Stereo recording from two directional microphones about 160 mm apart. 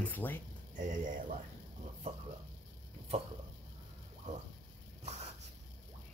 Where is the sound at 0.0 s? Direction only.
10° left (ahead or behind).